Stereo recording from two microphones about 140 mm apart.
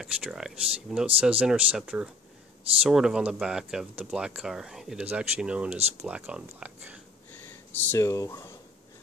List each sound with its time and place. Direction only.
0.0 s speech: 5° right (ahead or behind)
7.4 s speech: 15° left (ahead or behind)